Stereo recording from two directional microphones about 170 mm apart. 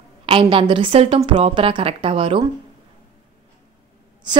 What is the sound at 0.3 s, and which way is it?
A woman's voice, 30° right (ahead or behind).